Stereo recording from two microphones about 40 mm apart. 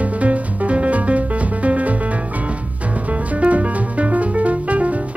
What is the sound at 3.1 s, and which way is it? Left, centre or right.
Music, right.